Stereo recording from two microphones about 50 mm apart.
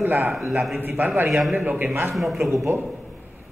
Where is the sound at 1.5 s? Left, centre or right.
Right.